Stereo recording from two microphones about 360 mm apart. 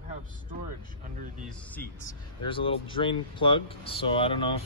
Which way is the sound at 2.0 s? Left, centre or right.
Centre.